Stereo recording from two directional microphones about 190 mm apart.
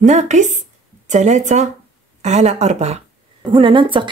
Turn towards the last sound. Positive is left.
turn(degrees=-25)  # may be behind; listen again after turning